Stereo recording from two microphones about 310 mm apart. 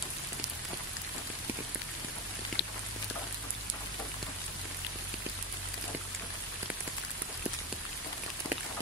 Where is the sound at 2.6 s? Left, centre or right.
Left.